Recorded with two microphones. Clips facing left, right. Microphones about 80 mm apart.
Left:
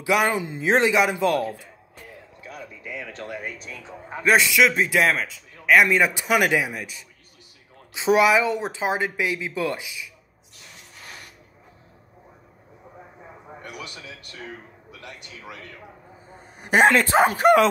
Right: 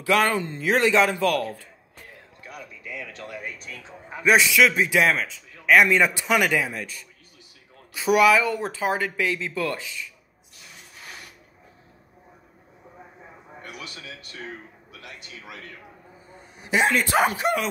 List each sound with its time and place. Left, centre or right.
0.0 s speech: centre
0.7 s speech: left
2.8 s a sound: left
3.8 s a man's voice: centre
16.3 s a sound: left
17.0 s speech: left